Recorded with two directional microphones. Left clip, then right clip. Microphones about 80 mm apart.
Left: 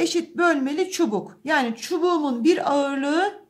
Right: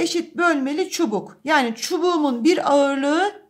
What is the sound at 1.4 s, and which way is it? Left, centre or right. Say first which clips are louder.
A woman's voice: right 4 dB; right.